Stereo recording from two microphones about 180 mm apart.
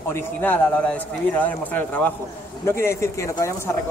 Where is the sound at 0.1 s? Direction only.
10° left (ahead or behind).